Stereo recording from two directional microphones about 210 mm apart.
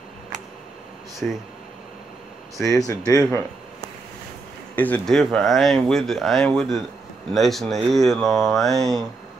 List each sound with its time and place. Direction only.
1.2 s speech: 5° left (ahead or behind)
2.5 s speech: 15° left (ahead or behind)
4.7 s speech: 10° left (ahead or behind)